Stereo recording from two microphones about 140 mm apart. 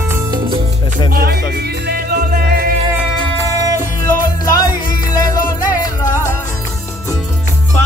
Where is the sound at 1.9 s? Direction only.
90° right.